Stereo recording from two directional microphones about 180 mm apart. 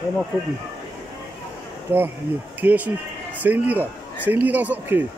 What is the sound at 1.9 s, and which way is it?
Speech, 15° right (ahead or behind).